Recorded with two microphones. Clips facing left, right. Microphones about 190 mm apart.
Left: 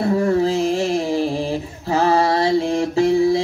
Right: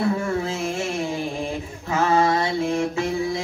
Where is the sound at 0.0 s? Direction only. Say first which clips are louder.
Left 6 dB; 35° left (ahead or behind).